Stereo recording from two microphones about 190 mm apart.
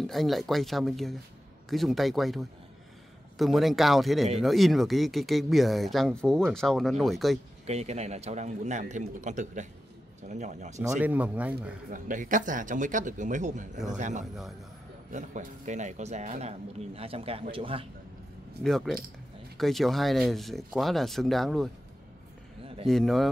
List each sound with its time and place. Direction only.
0.0 s speech: centre (ahead or behind)
7.6 s a man's voice: 35° right (ahead or behind)
10.8 s speech: 10° right (ahead or behind)
11.9 s a man's voice: 45° right (ahead or behind); by 17.8 s 30° right (ahead or behind)
18.6 s speech: centre (ahead or behind)
22.8 s speech: centre (ahead or behind)